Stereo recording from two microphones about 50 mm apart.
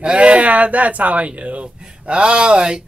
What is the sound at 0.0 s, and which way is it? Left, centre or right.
A woman's voice, right.